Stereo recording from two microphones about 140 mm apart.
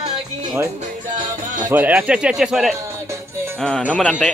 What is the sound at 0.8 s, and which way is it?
Music, 65° right (ahead or behind).